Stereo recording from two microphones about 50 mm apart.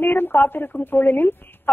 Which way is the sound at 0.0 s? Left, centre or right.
Left.